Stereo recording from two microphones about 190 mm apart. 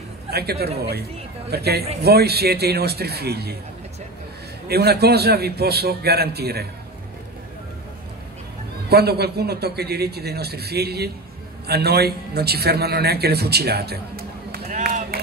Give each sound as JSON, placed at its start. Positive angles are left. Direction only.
{"t": 0.3, "sound": "a man's voice", "side_deg": -55}
{"t": 4.6, "sound": "a man's voice", "side_deg": -55}
{"t": 8.8, "sound": "a man's voice", "side_deg": -55}